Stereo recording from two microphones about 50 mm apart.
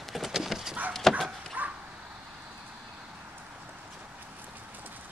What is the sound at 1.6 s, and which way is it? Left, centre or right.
Bow-wow, right.